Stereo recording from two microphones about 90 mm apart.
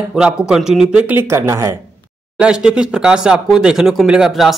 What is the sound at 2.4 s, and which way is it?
Speech, 10° right (ahead or behind).